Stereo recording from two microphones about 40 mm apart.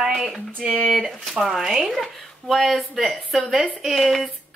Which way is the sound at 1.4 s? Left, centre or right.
Centre.